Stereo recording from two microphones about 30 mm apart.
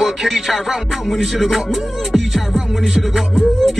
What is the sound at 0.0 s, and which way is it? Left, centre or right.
Music, centre.